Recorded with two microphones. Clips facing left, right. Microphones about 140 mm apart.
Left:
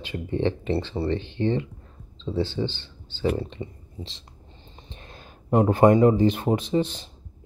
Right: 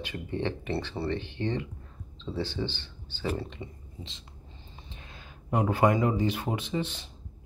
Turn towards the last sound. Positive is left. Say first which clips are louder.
# left 8 dB
turn(degrees=35)  # may be behind; listen again after turning